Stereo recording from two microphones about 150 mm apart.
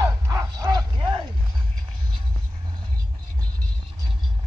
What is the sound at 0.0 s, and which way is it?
Bow-wow, 25° right (ahead or behind).